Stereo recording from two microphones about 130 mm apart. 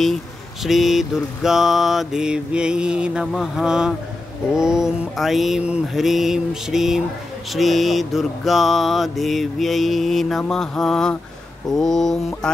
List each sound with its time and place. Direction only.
0.7 s mantra: centre (ahead or behind)